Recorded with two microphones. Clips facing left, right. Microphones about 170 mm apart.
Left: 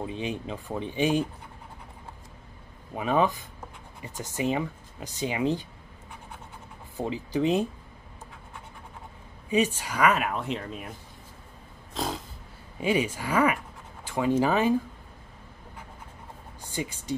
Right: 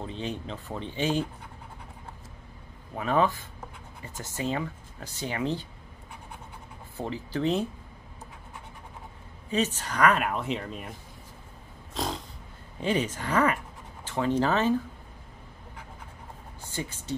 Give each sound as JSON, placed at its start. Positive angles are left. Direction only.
{"t": 0.0, "sound": "speech", "side_deg": 15}
{"t": 2.9, "sound": "speech", "side_deg": 15}
{"t": 7.0, "sound": "speech", "side_deg": 15}
{"t": 9.5, "sound": "speech", "side_deg": 10}
{"t": 11.9, "sound": "a sound", "side_deg": 0}
{"t": 12.8, "sound": "speech", "side_deg": 10}
{"t": 16.6, "sound": "speech", "side_deg": 15}